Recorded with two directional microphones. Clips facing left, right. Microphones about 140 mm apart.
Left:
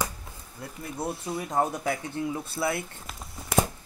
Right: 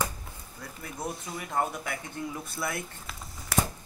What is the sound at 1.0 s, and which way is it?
Speech, 25° left (ahead or behind).